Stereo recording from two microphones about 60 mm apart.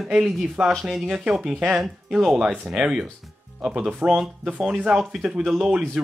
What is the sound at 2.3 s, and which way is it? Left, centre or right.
Speech, centre.